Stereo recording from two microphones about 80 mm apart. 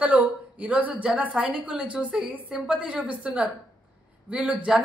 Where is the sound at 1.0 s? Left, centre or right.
Centre.